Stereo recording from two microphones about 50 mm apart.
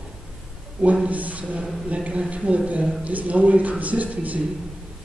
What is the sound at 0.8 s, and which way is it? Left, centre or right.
A man's voice, right.